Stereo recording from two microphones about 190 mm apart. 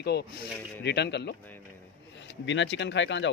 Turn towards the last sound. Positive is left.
turn(degrees=70)  # may be behind; listen again after turning